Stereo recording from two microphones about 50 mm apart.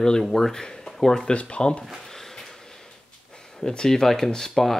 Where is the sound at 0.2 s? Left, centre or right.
Centre.